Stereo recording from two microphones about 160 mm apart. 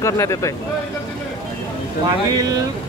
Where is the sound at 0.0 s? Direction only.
20° left (ahead or behind).